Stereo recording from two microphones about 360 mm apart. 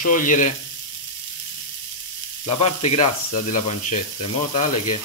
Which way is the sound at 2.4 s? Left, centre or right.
Centre.